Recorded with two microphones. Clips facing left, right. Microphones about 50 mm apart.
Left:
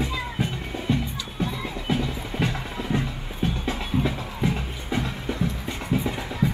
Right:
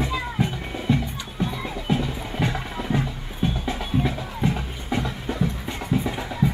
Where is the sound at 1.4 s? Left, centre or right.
Centre.